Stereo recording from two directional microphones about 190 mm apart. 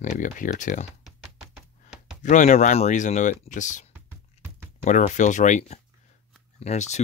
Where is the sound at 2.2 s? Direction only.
40° left (ahead or behind).